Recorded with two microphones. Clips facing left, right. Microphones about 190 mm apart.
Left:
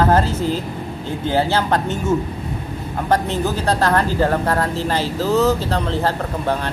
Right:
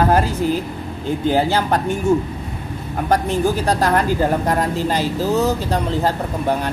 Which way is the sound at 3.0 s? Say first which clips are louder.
Right 2 dB; 15° right (ahead or behind).